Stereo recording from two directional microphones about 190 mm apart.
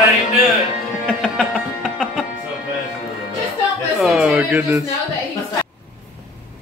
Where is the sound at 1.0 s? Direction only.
Centre (ahead or behind).